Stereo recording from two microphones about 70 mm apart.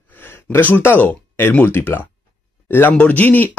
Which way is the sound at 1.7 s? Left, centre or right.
Left.